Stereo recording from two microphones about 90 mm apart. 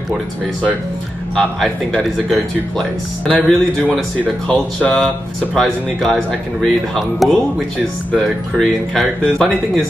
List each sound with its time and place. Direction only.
1.3 s speech: 5° left (ahead or behind)
5.0 s speech: centre (ahead or behind)